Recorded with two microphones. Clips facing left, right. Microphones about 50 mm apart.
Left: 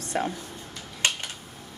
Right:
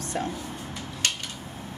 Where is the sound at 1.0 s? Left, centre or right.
Left.